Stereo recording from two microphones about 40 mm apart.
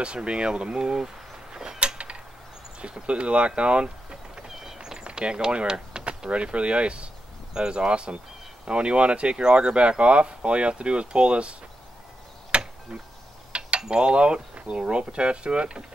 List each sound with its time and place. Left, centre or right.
0.0 s speech: right
1.8 s mechanisms: right
2.8 s speech: right
4.5 s a sound: centre
5.1 s speech: centre
12.4 s a sound: right
13.5 s mechanisms: right